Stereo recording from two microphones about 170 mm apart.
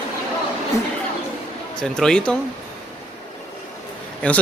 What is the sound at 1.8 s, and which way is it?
Speech, 5° left (ahead or behind).